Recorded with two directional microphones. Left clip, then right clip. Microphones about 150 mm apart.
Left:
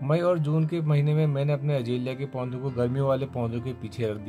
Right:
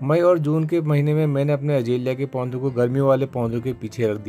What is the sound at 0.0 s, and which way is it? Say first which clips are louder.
Speech: right 7 dB; 45° right (ahead or behind).